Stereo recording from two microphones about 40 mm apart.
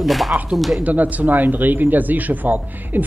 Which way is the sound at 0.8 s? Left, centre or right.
Right.